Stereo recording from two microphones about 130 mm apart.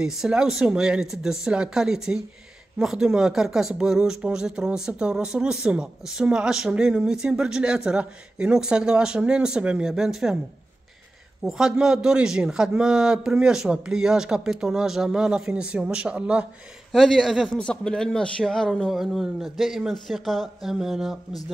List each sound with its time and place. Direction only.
0.0 s speech: 5° right (ahead or behind)
11.4 s speech: 5° right (ahead or behind)